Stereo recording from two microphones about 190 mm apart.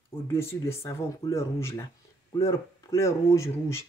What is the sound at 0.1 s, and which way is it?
Speech, 10° left (ahead or behind).